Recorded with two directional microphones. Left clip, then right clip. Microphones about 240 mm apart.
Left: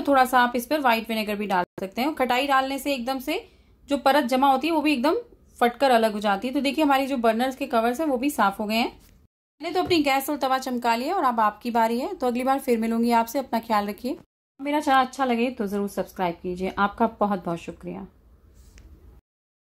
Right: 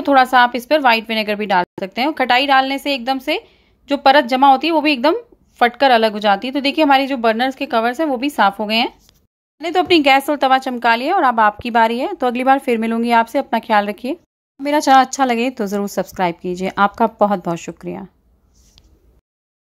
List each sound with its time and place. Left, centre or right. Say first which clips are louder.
0.0 s a woman's voice: right 8 dB; right